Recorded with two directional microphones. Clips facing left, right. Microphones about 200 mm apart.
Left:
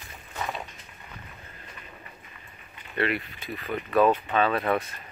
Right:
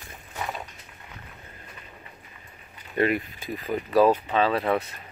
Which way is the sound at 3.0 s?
40° right (ahead or behind).